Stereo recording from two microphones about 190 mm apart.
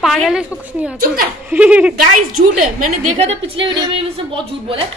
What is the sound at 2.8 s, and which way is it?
A woman's voice, 35° right (ahead or behind).